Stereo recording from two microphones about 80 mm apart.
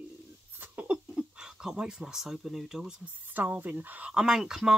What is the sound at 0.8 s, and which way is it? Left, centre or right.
Speech, centre.